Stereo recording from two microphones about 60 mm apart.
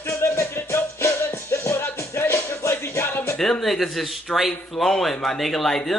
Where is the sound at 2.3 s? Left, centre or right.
Left.